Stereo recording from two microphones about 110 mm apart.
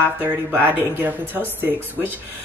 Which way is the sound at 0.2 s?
20° right (ahead or behind).